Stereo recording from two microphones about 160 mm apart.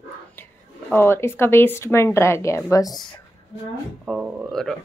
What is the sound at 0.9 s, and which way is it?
A woman's voice, 15° left (ahead or behind).